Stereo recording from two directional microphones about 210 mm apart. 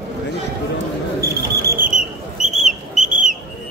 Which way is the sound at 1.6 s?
40° right (ahead or behind).